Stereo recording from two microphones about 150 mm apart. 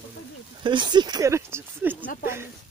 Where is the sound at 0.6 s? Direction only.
30° right (ahead or behind); by 2.1 s 15° right (ahead or behind).